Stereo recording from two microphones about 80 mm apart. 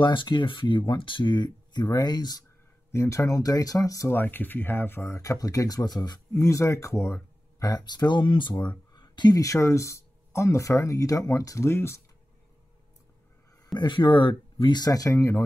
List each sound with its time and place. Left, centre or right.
0.0 s speech: left
2.9 s speech: left
4.1 s speech: left
6.3 s speech: left
7.6 s speech: left
8.9 s a sound: left
9.3 s speech: left
13.7 s speech: left
14.9 s speech: left